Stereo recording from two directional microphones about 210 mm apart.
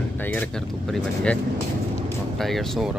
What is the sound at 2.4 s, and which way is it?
Speech, centre (ahead or behind).